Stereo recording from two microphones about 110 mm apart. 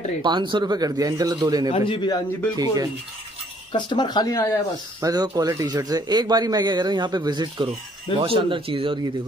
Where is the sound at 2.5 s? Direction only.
35° right (ahead or behind).